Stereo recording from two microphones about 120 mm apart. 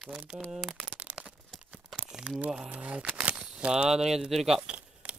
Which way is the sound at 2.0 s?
5° right (ahead or behind).